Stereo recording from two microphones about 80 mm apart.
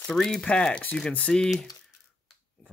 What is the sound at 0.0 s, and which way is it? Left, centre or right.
Speech, centre.